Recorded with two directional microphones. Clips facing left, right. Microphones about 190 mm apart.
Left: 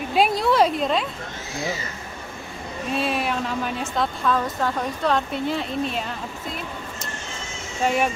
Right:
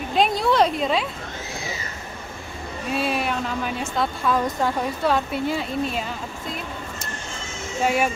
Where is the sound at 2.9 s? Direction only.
Centre (ahead or behind).